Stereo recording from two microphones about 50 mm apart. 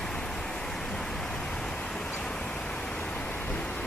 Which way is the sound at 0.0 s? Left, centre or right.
Centre.